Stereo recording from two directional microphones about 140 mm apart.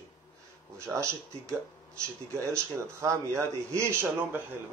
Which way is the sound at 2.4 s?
20° right (ahead or behind).